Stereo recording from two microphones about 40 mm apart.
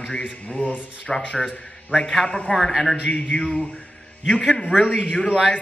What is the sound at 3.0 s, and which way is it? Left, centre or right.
Speech, left.